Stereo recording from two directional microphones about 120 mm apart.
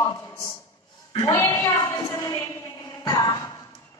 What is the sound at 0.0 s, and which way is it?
A man's voice, 30° left (ahead or behind).